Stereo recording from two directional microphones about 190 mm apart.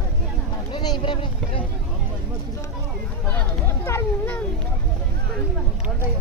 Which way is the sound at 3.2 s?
10° left (ahead or behind).